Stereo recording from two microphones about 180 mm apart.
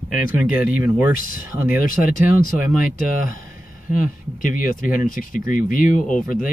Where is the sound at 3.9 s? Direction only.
50° left (ahead or behind).